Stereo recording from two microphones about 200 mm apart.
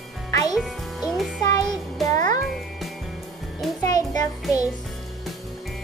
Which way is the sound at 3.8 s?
20° left (ahead or behind).